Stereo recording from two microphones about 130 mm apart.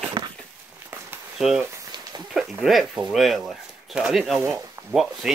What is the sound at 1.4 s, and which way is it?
Speech, 5° right (ahead or behind).